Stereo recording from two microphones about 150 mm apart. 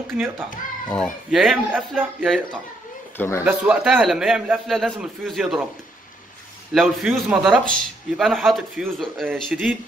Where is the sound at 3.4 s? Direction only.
10° right (ahead or behind).